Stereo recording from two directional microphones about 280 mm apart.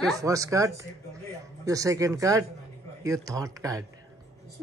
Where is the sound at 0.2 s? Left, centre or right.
Centre.